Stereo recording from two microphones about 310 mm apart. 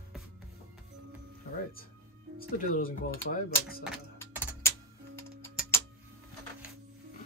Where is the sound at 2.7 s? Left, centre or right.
Left.